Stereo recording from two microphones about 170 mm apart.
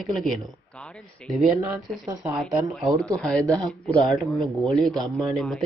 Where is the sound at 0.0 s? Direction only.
Centre (ahead or behind).